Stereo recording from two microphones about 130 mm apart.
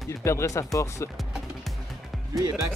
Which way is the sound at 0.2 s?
20° left (ahead or behind).